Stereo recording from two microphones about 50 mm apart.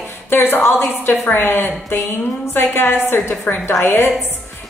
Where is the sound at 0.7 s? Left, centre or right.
Left.